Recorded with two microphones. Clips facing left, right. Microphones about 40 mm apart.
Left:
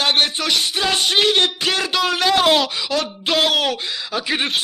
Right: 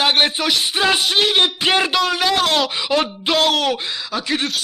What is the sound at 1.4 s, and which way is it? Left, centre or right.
Speech, right.